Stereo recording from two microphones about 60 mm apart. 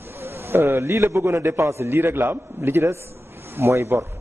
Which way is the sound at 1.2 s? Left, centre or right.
Right.